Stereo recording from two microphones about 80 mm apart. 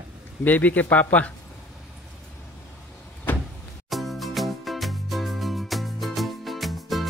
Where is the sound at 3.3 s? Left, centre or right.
Left.